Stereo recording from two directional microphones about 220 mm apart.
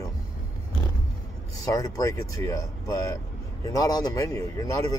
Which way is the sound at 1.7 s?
15° left (ahead or behind).